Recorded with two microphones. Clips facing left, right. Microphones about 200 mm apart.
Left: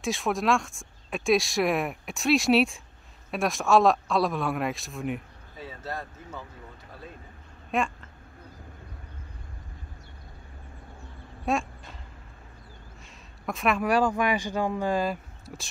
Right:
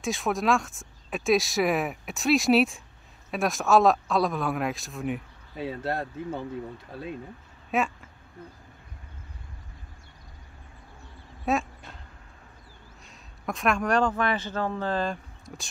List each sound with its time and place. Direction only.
0.0 s speech: centre (ahead or behind)
5.6 s speech: 65° right (ahead or behind)
7.7 s speech: 5° right (ahead or behind)
11.5 s speech: centre (ahead or behind)
13.5 s speech: centre (ahead or behind)